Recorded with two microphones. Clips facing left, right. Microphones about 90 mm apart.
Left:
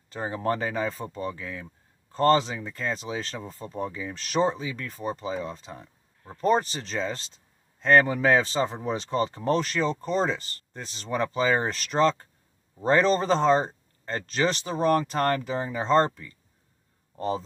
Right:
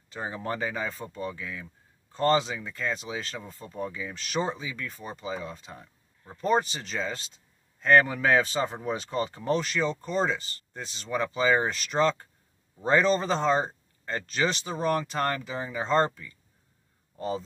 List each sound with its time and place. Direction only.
0.1 s speech: 40° left (ahead or behind)